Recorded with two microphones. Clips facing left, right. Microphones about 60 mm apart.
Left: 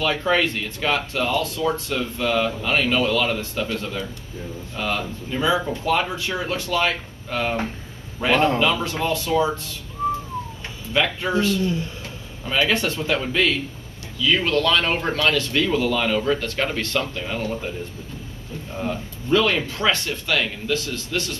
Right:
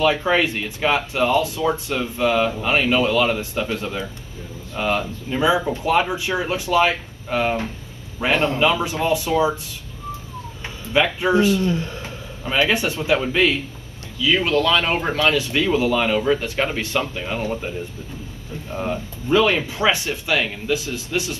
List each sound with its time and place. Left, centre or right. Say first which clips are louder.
0.0 s speech: right 3 dB; centre
10.9 s speech: right 4 dB; centre